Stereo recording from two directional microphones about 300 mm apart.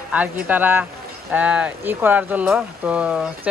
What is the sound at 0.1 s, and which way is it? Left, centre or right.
Speech, centre.